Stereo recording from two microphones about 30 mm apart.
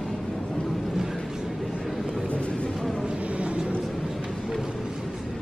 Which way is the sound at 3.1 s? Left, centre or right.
Right.